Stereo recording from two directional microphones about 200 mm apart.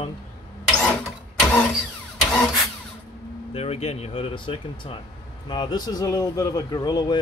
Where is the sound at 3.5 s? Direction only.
30° left (ahead or behind).